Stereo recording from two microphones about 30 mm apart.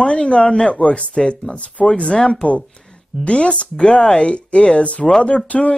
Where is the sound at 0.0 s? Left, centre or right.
Left.